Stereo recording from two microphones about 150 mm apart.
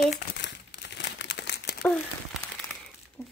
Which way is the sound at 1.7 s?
90° left.